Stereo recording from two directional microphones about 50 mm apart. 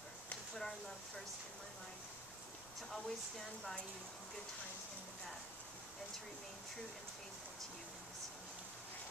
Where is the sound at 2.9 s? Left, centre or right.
Centre.